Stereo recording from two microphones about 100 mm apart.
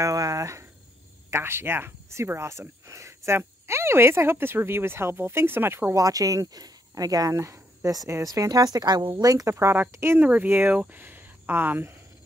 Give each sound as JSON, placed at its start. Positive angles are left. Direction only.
{"t": 0.0, "sound": "cricket", "side_deg": -35}
{"t": 1.3, "sound": "speech", "side_deg": -25}
{"t": 5.9, "sound": "speech", "side_deg": -35}